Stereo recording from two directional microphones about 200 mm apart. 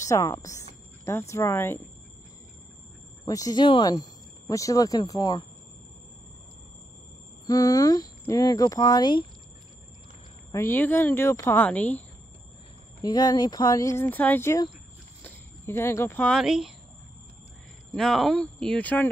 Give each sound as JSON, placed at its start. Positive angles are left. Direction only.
{"t": 0.0, "sound": "a woman's voice", "side_deg": 15}
{"t": 3.3, "sound": "speech", "side_deg": 20}
{"t": 7.4, "sound": "speech", "side_deg": 20}
{"t": 10.5, "sound": "speech", "side_deg": 10}
{"t": 13.0, "sound": "speech", "side_deg": 20}
{"t": 17.9, "sound": "speech", "side_deg": 0}